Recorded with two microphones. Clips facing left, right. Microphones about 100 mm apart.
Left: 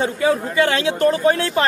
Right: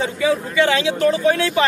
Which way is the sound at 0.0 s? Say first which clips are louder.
Left 1 dB; 45° left (ahead or behind).